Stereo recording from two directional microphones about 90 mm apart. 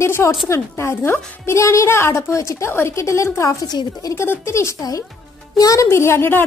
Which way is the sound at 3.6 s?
45° left (ahead or behind).